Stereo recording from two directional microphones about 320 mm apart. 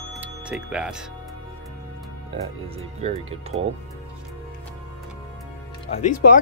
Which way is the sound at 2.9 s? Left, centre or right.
Centre.